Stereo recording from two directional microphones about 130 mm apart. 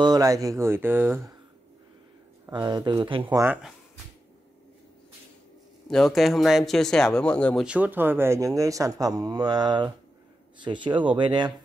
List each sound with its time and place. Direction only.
0.0 s speech: 30° right (ahead or behind)
2.5 s speech: 30° right (ahead or behind)
5.9 s speech: centre (ahead or behind)
7.6 s speech: 10° right (ahead or behind); by 11.5 s 35° right (ahead or behind)